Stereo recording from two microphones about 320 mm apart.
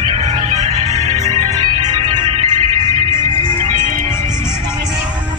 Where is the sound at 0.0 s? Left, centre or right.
Centre.